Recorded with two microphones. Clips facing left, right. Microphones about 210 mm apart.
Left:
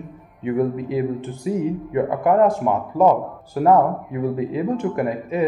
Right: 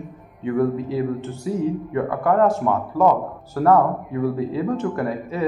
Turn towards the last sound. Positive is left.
turn(degrees=15)  # may be behind; listen again after turning